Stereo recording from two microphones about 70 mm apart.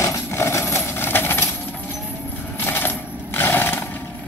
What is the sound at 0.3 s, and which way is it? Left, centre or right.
Coin, left.